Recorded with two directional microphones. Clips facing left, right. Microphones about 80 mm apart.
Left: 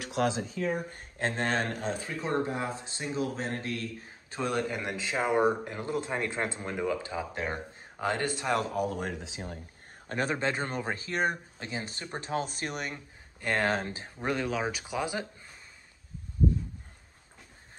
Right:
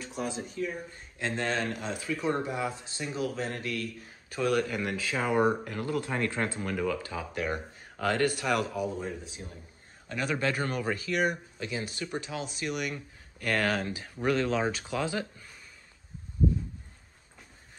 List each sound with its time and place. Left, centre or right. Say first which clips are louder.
0.0 s speech: left 6 dB; left
0.9 s speech: left 1 dB; left
8.7 s speech: left 1 dB; left
10.0 s speech: even; left
12.9 s speech: right 3 dB; left
14.5 s speech: right 2 dB; centre